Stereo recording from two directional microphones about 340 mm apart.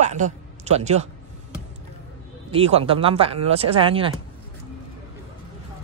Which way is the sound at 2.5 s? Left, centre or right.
Centre.